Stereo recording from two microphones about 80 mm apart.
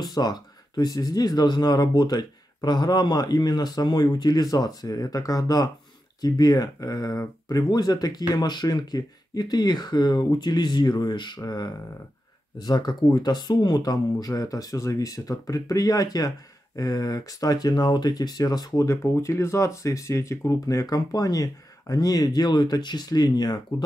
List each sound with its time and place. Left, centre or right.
0.0 s speech: left